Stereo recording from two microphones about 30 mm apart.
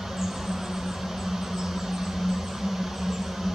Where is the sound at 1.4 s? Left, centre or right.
Centre.